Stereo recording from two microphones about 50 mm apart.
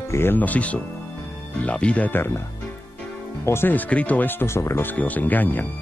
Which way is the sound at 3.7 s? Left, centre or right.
Left.